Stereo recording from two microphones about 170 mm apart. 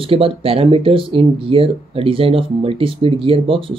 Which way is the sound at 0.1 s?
35° right (ahead or behind).